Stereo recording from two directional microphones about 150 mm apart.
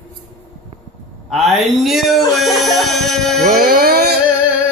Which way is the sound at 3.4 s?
70° right (ahead or behind).